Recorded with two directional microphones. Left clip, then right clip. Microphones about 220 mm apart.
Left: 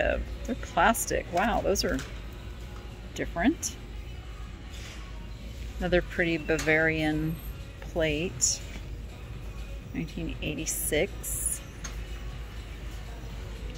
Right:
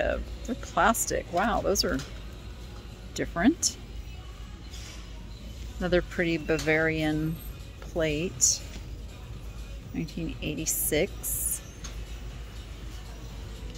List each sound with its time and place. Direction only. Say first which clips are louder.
0.0 s speech: left 1 dB; 5° right (ahead or behind)
3.2 s speech: right 2 dB; 20° right (ahead or behind)
5.8 s speech: even; 15° right (ahead or behind)
9.9 s speech: right 1 dB; 15° right (ahead or behind)